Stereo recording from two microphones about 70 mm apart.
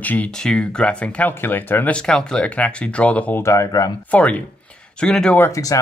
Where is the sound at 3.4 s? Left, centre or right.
Left.